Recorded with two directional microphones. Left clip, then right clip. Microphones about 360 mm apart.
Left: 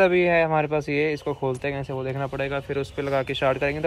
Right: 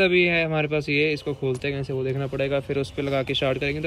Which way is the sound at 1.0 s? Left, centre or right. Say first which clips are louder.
Right 1 dB; centre.